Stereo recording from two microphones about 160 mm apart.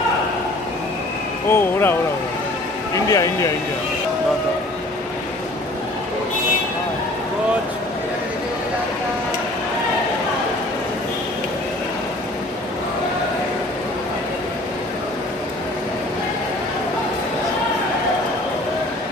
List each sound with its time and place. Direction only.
1.5 s speech: 15° left (ahead or behind)